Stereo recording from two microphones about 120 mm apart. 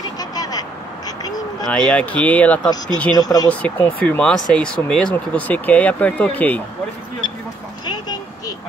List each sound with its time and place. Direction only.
0.0 s quack: 30° left (ahead or behind)
1.6 s speech: 5° left (ahead or behind)
3.2 s speech: 30° left (ahead or behind)
3.4 s speech: 15° left (ahead or behind)
7.8 s vehicle: 35° left (ahead or behind)